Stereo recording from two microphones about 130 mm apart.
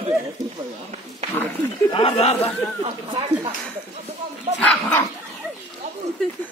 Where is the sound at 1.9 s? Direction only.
50° left (ahead or behind).